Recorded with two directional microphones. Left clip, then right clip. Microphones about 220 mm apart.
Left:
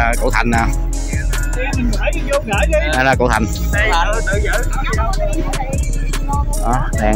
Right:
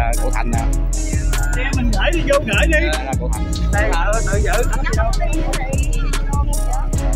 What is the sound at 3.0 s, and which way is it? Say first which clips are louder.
Music: left 12 dB; 30° left (ahead or behind).